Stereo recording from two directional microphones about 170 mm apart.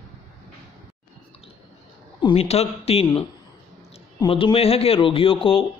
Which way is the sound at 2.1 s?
35° left (ahead or behind).